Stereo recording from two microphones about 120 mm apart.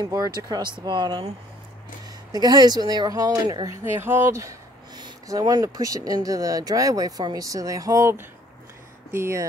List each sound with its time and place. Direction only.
0.0 s speech: 30° right (ahead or behind)
2.3 s speech: 35° right (ahead or behind)
3.8 s speech: 20° right (ahead or behind)